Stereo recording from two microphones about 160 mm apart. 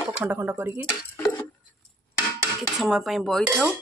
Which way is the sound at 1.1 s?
15° left (ahead or behind).